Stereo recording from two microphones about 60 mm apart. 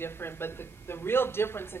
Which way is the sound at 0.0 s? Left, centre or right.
Left.